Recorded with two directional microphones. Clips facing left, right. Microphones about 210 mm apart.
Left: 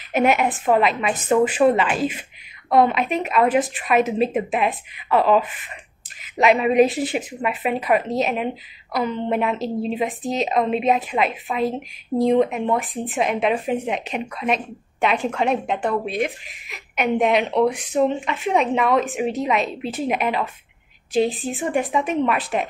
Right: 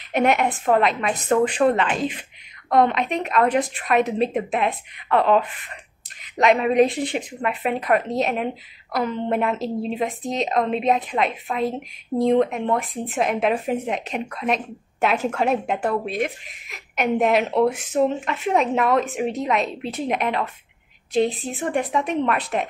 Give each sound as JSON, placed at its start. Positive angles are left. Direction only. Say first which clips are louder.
{"t": 0.1, "sound": "a woman's voice", "louder": "left 1 dB", "side_deg": 5}